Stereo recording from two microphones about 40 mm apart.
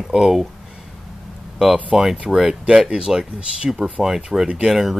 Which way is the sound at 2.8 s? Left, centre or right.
Right.